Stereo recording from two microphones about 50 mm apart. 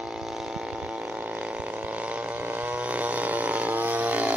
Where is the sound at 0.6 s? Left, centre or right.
Centre.